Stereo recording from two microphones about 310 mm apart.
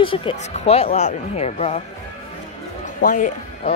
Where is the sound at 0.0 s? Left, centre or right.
Centre.